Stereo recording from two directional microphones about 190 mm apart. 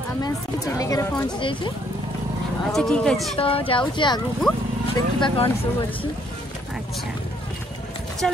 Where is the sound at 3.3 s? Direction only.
30° left (ahead or behind).